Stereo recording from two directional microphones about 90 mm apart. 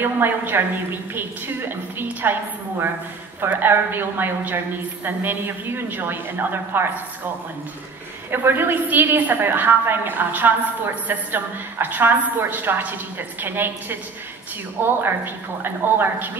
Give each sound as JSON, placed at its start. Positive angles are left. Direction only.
{"t": 0.0, "sound": "a woman's voice", "side_deg": -25}
{"t": 2.0, "sound": "a woman's voice", "side_deg": -25}
{"t": 3.3, "sound": "a woman's voice", "side_deg": -20}
{"t": 8.3, "sound": "a woman's voice", "side_deg": -25}